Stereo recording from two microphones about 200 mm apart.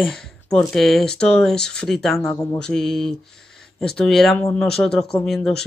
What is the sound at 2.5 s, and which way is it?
Speech, 5° left (ahead or behind).